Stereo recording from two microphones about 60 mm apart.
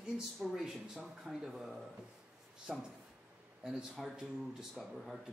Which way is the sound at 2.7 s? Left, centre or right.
Centre.